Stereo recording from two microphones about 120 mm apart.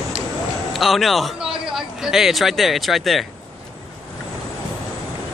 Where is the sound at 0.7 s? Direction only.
Centre (ahead or behind).